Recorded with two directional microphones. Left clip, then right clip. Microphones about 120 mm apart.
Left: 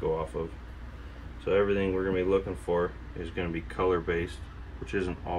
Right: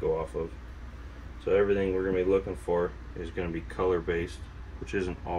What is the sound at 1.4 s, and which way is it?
Speech, 35° left (ahead or behind).